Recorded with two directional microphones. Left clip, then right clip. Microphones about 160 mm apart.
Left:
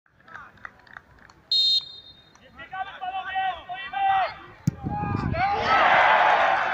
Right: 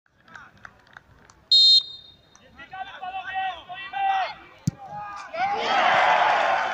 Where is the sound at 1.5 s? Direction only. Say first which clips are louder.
Right 6 dB; 25° left (ahead or behind).